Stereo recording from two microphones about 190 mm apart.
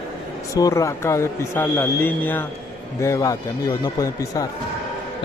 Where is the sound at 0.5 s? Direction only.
15° left (ahead or behind).